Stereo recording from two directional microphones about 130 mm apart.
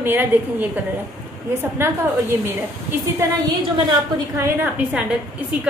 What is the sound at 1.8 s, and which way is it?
Speech, 20° right (ahead or behind).